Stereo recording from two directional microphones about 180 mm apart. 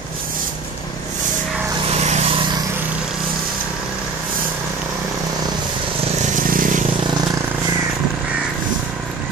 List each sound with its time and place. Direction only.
6.4 s vehicle: 50° right (ahead or behind)